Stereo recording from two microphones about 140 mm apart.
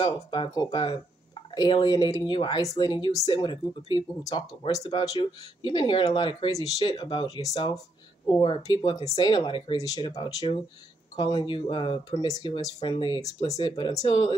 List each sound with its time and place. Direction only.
0.0 s speech: 35° left (ahead or behind)
9.8 s speech: 25° left (ahead or behind)
10.0 s speech: 35° left (ahead or behind)
12.4 s speech: 45° left (ahead or behind)
12.8 s speech: 35° left (ahead or behind)